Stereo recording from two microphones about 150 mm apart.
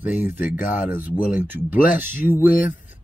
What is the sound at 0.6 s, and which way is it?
Speech, 65° left (ahead or behind).